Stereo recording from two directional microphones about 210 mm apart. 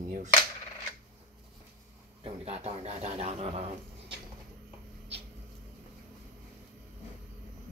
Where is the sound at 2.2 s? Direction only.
30° right (ahead or behind).